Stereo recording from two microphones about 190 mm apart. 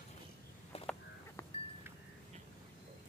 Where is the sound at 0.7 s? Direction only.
30° left (ahead or behind).